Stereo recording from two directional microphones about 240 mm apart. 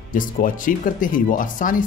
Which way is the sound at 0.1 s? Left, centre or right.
Left.